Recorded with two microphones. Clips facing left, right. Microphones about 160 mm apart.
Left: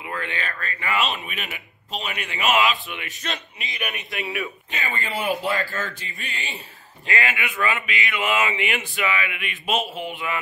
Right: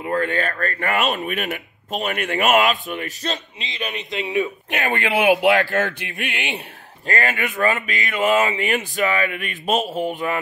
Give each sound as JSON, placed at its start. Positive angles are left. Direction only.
{"t": 0.0, "sound": "speech", "side_deg": -45}
{"t": 3.5, "sound": "a man's voice", "side_deg": -25}
{"t": 4.6, "sound": "speech", "side_deg": -75}
{"t": 7.1, "sound": "speech", "side_deg": -45}